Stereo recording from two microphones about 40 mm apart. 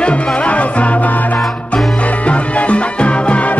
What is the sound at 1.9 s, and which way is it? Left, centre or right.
Music, left.